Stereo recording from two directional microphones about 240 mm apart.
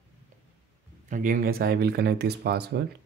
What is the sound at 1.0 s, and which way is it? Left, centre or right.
Speech, right.